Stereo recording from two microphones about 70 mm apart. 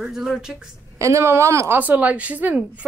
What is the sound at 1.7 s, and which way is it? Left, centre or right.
Speech, right.